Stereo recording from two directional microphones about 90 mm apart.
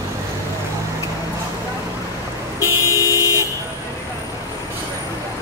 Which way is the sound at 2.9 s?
40° left (ahead or behind).